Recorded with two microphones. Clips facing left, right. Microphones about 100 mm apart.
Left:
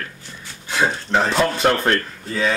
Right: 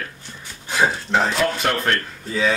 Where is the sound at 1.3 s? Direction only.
30° left (ahead or behind).